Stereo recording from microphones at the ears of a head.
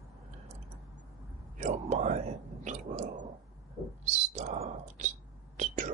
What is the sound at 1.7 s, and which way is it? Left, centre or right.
Speech, right.